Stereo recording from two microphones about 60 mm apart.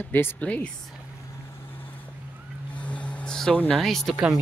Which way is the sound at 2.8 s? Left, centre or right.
Left.